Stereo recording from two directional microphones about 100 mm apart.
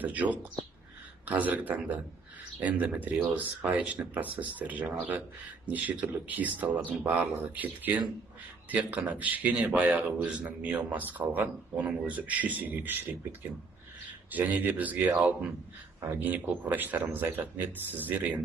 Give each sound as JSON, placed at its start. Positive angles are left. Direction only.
{"t": 0.0, "sound": "speech", "side_deg": -15}